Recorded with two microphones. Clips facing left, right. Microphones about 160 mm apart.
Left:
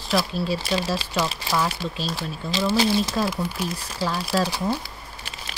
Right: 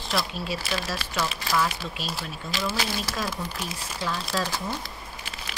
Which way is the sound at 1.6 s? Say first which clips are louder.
Left 4 dB; 35° left (ahead or behind).